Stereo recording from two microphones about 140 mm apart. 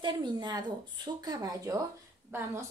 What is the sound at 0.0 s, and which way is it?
A woman's voice, 30° right (ahead or behind).